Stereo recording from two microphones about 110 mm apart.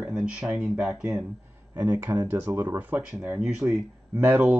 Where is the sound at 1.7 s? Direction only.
25° right (ahead or behind).